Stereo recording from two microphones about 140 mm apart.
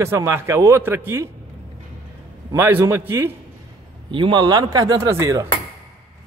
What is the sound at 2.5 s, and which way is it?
Speech, 20° right (ahead or behind).